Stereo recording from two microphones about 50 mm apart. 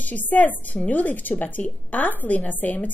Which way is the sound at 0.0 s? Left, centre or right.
Left.